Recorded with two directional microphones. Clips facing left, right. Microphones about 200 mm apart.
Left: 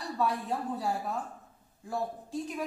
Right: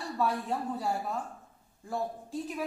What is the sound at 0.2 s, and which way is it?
Speech, centre (ahead or behind).